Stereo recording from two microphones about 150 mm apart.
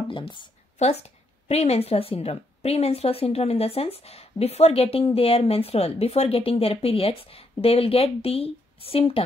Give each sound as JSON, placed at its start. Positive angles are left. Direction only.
{"t": 0.1, "sound": "a woman's voice", "side_deg": 35}
{"t": 0.7, "sound": "a woman's voice", "side_deg": 45}